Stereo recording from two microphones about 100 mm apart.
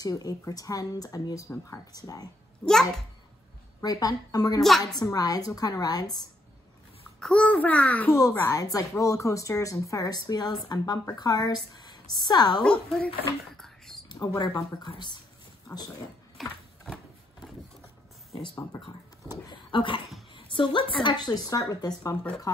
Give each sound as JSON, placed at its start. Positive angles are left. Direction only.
{"t": 0.0, "sound": "speech", "side_deg": 40}
{"t": 2.6, "sound": "a child's voice", "side_deg": 5}
{"t": 3.8, "sound": "speech", "side_deg": 40}
{"t": 4.6, "sound": "a child's voice", "side_deg": 0}
{"t": 4.9, "sound": "speech", "side_deg": 40}
{"t": 7.2, "sound": "a child's voice", "side_deg": 10}
{"t": 8.1, "sound": "speech", "side_deg": 30}
{"t": 12.6, "sound": "a child's voice", "side_deg": 10}
{"t": 13.6, "sound": "whispering", "side_deg": 5}
{"t": 14.0, "sound": "speech", "side_deg": 45}
{"t": 16.4, "sound": "a sound", "side_deg": 0}
{"t": 19.5, "sound": "speech", "side_deg": 55}